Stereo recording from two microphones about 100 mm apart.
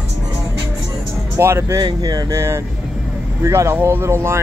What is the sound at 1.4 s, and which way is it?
Speech, 25° right (ahead or behind).